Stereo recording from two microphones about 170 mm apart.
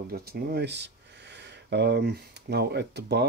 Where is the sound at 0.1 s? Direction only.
65° right (ahead or behind).